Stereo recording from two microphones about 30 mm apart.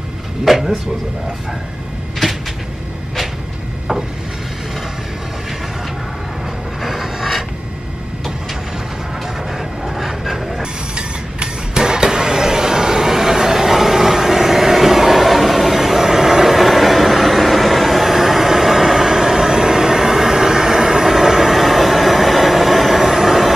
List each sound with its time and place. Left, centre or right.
0.5 s speech: centre
2.2 s cupboard open or close: centre
6.8 s a sound: centre
9.5 s vehicle: centre
10.6 s mechanisms: right
11.8 s a sound: right